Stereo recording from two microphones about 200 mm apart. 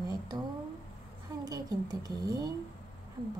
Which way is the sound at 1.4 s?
20° right (ahead or behind).